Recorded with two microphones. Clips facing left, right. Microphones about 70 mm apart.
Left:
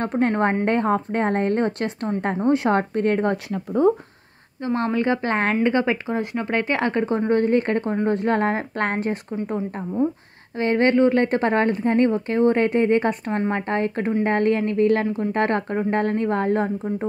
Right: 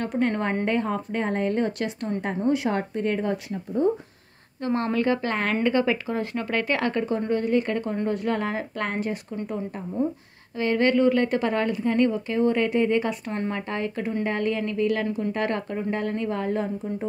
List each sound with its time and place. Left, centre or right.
0.0 s a woman's voice: left
3.5 s speech: left
4.6 s a woman's voice: centre; by 7.9 s left
7.9 s a woman's voice: left
10.0 s speech: left
10.6 s a woman's voice: left